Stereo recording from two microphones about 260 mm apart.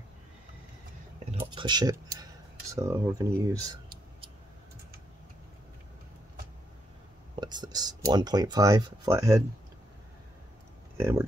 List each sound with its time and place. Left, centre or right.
1.3 s speech: centre
7.3 s speech: centre
11.0 s speech: centre